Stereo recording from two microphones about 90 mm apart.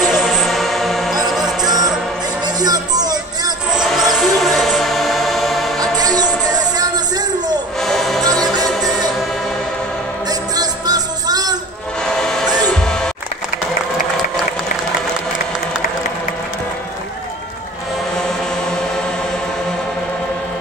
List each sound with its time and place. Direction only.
0.0 s music: 5° right (ahead or behind)
1.7 s music: 45° right (ahead or behind)
3.7 s music: 5° right (ahead or behind)
5.8 s music: 45° right (ahead or behind)
7.8 s music: centre (ahead or behind)
8.2 s music: 45° right (ahead or behind)
10.5 s music: 45° right (ahead or behind)
12.1 s train: 5° left (ahead or behind)
12.6 s music: 5° left (ahead or behind)